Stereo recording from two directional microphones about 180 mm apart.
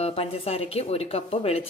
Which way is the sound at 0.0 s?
35° left (ahead or behind).